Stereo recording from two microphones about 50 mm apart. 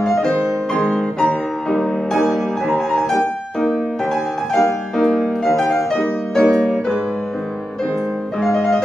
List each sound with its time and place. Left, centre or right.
0.0 s music: centre
8.4 s music: centre